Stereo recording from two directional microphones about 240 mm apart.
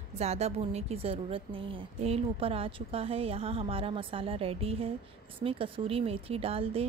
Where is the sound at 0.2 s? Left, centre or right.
Right.